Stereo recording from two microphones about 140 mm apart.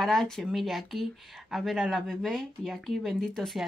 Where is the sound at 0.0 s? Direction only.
Centre (ahead or behind).